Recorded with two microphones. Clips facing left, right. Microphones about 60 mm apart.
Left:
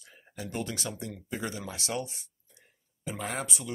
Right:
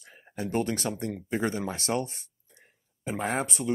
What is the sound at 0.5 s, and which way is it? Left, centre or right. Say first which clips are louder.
Speech: right 7 dB; right.